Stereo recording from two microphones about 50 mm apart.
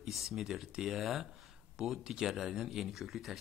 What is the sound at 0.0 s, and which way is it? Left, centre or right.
Speech, centre.